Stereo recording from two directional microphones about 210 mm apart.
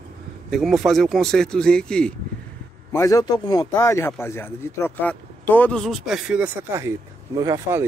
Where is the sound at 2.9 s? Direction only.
15° left (ahead or behind).